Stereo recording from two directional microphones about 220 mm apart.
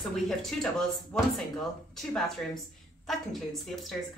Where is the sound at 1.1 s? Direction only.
Centre (ahead or behind).